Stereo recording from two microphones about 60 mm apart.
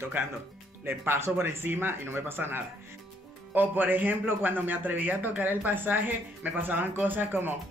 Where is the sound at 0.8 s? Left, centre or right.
Right.